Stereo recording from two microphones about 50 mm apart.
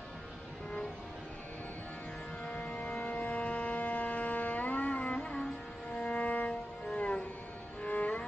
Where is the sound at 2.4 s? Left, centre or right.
Left.